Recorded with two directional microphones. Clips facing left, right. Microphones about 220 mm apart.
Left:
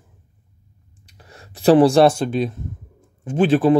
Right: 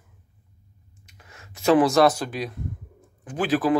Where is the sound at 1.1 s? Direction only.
35° left (ahead or behind).